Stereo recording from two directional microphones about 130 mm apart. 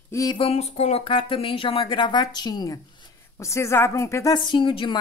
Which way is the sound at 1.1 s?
45° left (ahead or behind).